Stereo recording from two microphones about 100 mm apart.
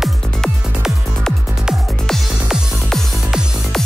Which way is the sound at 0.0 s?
5° right (ahead or behind).